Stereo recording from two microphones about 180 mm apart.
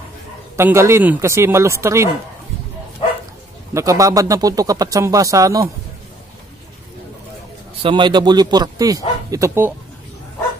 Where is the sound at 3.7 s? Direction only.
15° right (ahead or behind).